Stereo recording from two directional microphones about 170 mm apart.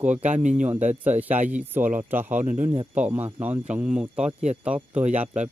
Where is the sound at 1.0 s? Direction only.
10° right (ahead or behind).